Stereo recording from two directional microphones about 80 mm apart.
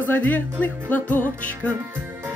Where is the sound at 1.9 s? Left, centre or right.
Right.